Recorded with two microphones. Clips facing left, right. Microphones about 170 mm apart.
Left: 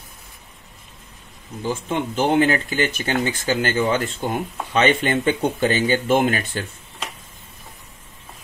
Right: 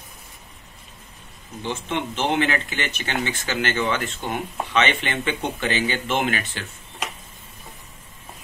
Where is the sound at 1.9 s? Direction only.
35° left (ahead or behind).